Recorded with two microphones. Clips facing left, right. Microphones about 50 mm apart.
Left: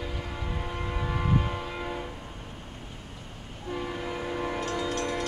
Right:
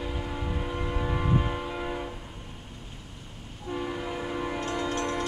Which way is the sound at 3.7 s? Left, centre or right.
Centre.